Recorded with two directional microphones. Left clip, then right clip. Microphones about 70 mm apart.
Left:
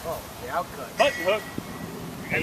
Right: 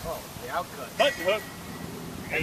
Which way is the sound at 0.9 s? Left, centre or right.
Right.